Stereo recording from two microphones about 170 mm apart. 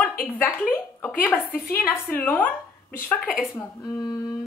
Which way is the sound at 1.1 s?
5° left (ahead or behind).